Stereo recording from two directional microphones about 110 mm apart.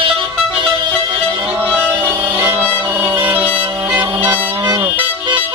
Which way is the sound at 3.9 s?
15° right (ahead or behind).